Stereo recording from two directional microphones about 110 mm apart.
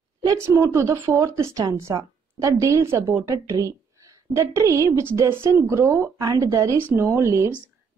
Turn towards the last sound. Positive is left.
turn(degrees=-25)  # may be behind; listen again after turning